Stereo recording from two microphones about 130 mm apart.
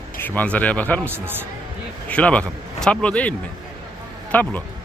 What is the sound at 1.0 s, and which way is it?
Speech, 15° right (ahead or behind).